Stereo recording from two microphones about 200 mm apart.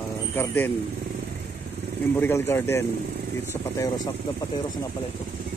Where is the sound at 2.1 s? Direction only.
10° left (ahead or behind).